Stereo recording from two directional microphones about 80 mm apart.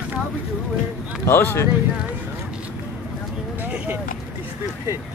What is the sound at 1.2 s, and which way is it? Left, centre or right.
Speech, left.